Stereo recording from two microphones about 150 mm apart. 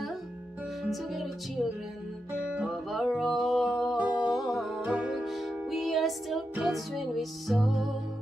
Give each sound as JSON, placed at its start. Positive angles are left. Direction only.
{"t": 0.8, "sound": "music", "side_deg": 0}